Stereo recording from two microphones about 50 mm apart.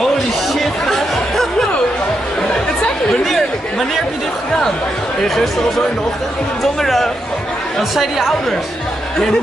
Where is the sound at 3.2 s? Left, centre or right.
Centre.